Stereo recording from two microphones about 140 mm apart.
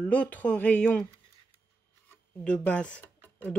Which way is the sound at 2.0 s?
10° left (ahead or behind).